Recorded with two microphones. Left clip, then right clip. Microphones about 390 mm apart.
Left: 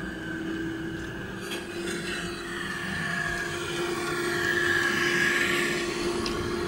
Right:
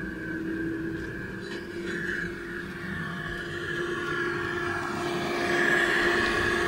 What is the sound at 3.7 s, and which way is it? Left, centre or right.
Vehicle, centre.